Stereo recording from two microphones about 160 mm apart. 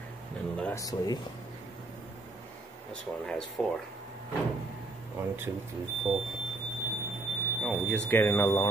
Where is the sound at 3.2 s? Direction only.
5° left (ahead or behind).